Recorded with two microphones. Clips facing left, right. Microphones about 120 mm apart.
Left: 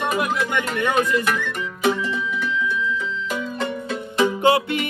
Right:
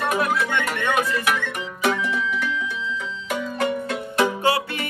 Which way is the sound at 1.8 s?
60° right (ahead or behind).